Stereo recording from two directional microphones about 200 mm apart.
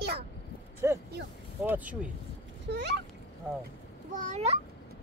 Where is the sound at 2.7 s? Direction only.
60° right (ahead or behind).